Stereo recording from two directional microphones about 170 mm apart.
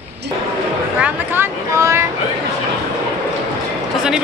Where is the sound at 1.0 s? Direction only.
10° right (ahead or behind).